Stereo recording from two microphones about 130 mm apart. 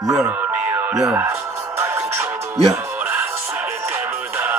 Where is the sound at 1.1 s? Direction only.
20° right (ahead or behind).